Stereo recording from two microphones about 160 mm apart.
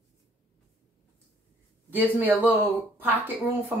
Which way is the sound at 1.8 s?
10° right (ahead or behind).